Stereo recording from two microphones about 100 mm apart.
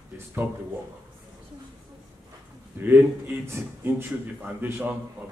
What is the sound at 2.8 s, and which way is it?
A man's voice, 20° right (ahead or behind).